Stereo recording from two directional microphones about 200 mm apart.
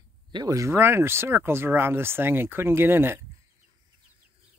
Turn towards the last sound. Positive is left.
turn(degrees=-10)  # may be behind; listen again after turning